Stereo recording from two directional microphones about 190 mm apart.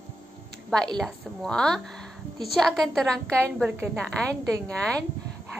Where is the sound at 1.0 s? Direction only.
Centre (ahead or behind).